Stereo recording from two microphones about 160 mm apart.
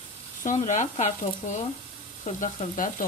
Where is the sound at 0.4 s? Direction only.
50° left (ahead or behind).